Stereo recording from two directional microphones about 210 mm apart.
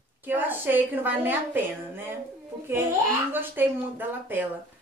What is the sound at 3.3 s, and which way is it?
Speech, 10° right (ahead or behind).